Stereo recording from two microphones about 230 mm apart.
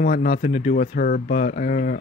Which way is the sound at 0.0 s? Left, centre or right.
Left.